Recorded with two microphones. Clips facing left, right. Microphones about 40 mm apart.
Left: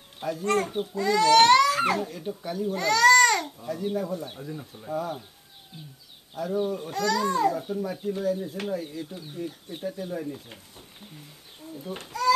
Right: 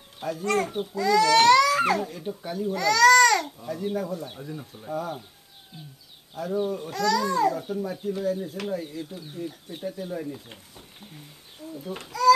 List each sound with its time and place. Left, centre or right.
0.2 s speech: centre
0.9 s speech: left
2.0 s speech: centre
2.7 s speech: left
3.4 s speech: centre
6.3 s speech: centre
6.9 s a child's voice: left
7.5 s speech: centre
11.7 s a child's voice: centre
12.0 s speech: left